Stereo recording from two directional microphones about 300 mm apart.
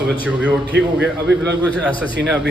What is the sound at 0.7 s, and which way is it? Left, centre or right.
Speech, right.